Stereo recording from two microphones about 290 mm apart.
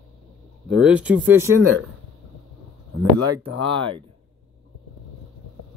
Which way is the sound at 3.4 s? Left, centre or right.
Centre.